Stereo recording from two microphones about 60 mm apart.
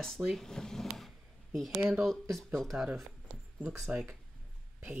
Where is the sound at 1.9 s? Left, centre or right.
Centre.